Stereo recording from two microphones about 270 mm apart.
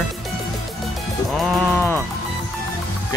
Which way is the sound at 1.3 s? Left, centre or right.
Centre.